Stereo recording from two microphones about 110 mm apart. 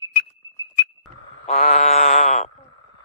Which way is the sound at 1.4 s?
90° left.